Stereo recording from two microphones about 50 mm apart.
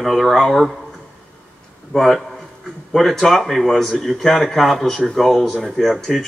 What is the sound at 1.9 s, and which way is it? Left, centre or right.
A man's voice, centre.